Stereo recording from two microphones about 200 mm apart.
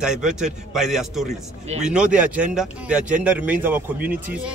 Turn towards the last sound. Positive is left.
turn(degrees=-10)  # may be behind; listen again after turning